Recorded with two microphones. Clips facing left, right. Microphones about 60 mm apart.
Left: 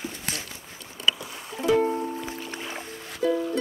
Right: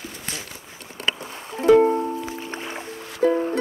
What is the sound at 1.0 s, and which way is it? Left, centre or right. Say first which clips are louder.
Music: even; right.